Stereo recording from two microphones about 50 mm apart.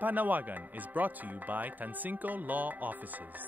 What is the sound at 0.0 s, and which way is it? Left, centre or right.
A woman's voice, right.